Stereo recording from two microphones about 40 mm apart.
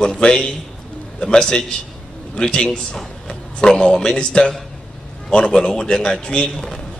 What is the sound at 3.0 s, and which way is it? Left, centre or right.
A man's voice, centre.